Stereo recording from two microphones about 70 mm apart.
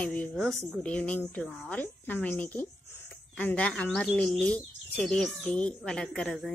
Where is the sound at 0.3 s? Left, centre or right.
Centre.